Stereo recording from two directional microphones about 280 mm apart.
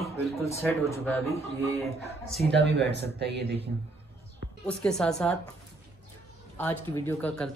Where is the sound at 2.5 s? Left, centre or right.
Right.